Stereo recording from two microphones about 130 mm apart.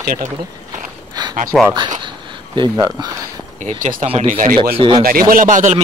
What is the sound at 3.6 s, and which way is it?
Speech, 75° right (ahead or behind).